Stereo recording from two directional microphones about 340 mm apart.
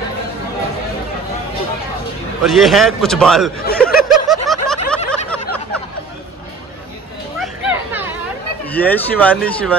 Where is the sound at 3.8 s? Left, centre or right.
Centre.